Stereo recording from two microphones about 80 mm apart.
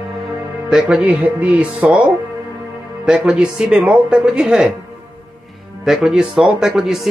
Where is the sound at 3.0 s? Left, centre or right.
Centre.